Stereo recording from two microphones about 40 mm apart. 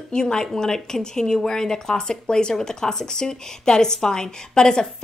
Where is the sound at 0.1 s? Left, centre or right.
Centre.